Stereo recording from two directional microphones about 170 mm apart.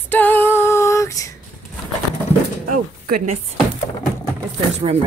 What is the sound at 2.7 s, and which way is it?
Speech, 55° right (ahead or behind).